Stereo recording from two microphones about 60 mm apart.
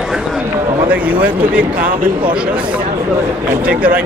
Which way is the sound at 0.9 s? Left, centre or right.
Right.